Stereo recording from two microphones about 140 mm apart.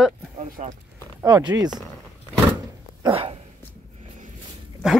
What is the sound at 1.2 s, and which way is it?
Speech, 25° right (ahead or behind).